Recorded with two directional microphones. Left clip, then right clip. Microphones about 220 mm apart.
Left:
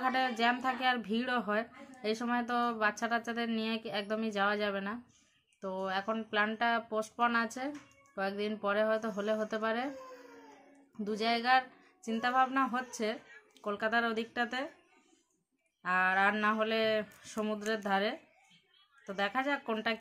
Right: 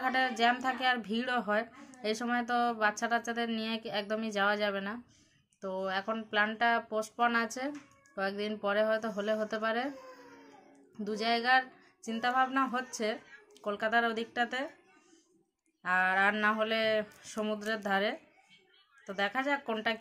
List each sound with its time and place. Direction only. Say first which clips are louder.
0.0 s speech: right 2 dB; 5° right (ahead or behind)
11.1 s speech: right 1 dB; centre (ahead or behind)
15.8 s speech: right 1 dB; 5° right (ahead or behind)